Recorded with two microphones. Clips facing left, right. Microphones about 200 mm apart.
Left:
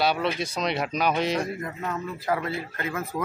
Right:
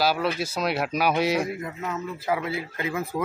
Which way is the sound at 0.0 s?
5° right (ahead or behind).